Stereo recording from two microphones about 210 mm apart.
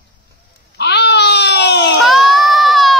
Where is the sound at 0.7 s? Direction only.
55° left (ahead or behind).